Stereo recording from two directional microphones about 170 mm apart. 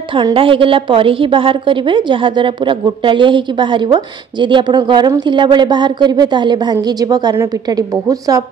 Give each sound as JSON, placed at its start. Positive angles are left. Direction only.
{"t": 0.1, "sound": "a woman's voice", "side_deg": -30}